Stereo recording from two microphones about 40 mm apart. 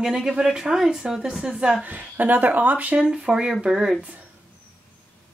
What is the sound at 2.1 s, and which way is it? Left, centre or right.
Speech, right.